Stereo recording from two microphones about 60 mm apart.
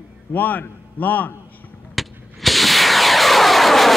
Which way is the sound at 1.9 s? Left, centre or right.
Centre.